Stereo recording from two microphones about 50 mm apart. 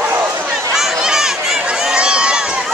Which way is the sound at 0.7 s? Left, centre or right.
Centre.